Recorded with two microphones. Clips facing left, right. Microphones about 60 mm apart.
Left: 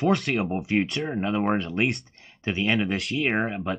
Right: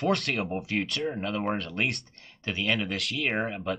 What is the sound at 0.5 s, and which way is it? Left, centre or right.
Speech, left.